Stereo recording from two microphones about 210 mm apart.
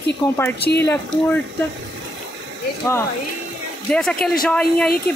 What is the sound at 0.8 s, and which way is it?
Speech, 10° left (ahead or behind).